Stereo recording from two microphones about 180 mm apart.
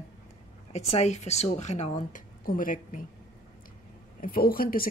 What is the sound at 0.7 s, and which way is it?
Speech, 35° left (ahead or behind).